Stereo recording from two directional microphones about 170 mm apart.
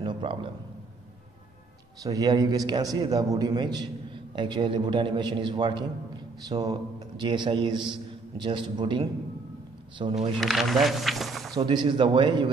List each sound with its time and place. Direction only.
0.0 s a sound: 30° right (ahead or behind)
2.0 s a man's voice: 20° right (ahead or behind)
10.4 s speech: centre (ahead or behind)
11.5 s a man's voice: 25° right (ahead or behind)